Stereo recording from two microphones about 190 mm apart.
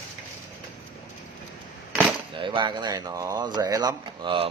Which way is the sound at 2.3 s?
25° right (ahead or behind).